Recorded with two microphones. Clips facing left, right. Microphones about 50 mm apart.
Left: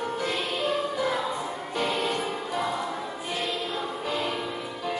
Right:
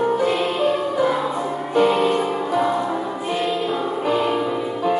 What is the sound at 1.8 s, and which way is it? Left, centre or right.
Music, right.